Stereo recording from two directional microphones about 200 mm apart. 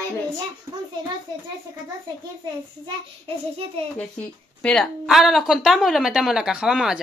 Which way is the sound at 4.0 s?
5° left (ahead or behind).